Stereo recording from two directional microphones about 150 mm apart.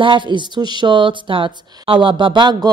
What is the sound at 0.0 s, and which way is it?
A woman's voice, 35° right (ahead or behind).